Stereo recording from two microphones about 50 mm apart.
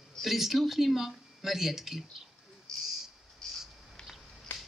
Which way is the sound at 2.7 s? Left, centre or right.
Centre.